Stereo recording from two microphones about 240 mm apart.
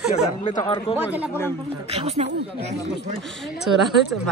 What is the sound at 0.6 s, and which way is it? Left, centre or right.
Speech, centre.